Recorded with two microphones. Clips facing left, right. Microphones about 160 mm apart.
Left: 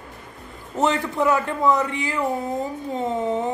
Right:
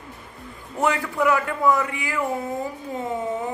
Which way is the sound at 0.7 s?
20° left (ahead or behind).